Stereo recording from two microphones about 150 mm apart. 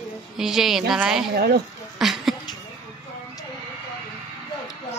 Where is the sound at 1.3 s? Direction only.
90° right.